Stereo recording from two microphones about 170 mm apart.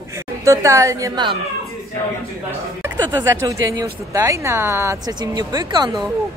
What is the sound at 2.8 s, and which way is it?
A woman's voice, 15° right (ahead or behind).